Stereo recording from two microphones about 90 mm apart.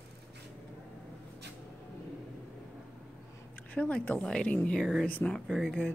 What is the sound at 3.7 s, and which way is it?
Speech, 15° left (ahead or behind).